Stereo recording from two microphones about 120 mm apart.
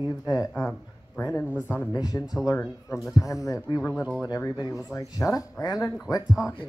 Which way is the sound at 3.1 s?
25° left (ahead or behind).